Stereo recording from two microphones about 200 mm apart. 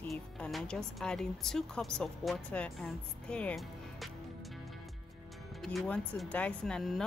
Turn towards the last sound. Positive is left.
turn(degrees=0)  # may be behind; listen again after turning